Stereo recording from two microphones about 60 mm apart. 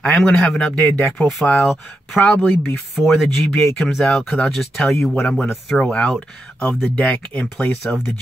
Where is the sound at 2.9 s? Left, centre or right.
Centre.